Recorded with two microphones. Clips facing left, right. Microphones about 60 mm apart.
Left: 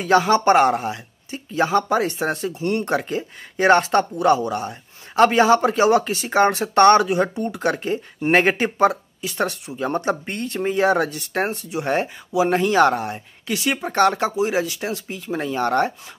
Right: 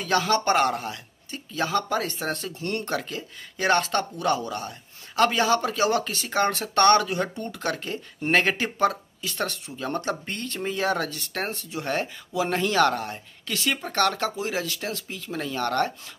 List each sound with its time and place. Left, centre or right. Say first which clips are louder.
0.0 s speech: left 7 dB; centre